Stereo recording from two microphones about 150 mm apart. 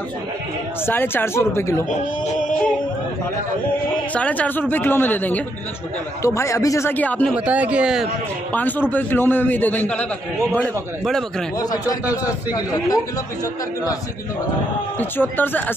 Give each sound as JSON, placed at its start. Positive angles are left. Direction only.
{"t": 0.8, "sound": "a man's voice", "side_deg": 15}
{"t": 4.1, "sound": "a man's voice", "side_deg": 10}
{"t": 7.3, "sound": "speech", "side_deg": -10}
{"t": 8.5, "sound": "a man's voice", "side_deg": 10}
{"t": 11.5, "sound": "speech", "side_deg": 25}
{"t": 15.0, "sound": "a man's voice", "side_deg": 15}